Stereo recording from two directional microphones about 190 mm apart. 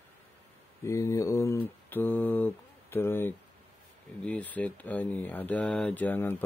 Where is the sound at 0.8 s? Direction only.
15° left (ahead or behind).